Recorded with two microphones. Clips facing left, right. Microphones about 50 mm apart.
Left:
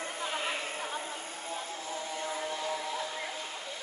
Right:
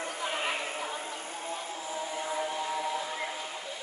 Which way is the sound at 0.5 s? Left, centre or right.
Centre.